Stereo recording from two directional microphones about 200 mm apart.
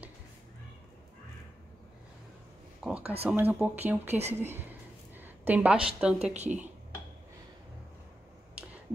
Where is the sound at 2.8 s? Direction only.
5° right (ahead or behind).